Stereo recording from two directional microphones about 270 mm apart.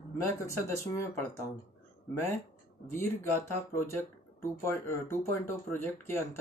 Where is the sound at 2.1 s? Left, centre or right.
Centre.